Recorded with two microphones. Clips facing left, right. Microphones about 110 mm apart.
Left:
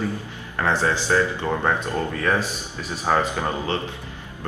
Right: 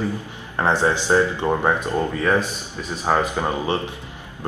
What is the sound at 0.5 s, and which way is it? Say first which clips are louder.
Speech: right 3 dB; 20° right (ahead or behind).